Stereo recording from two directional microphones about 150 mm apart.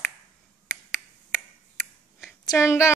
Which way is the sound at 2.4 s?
20° left (ahead or behind).